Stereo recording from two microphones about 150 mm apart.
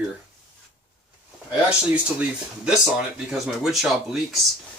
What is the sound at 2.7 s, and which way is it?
Speech, 5° right (ahead or behind).